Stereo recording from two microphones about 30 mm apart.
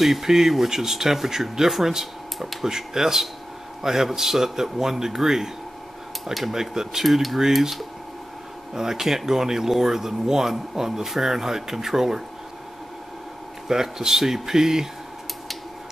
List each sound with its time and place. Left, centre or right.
0.0 s speech: centre
6.5 s speech: centre
7.1 s speech: centre
8.7 s speech: centre
13.7 s speech: centre